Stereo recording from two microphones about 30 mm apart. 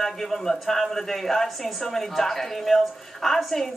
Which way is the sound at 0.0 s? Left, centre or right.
Centre.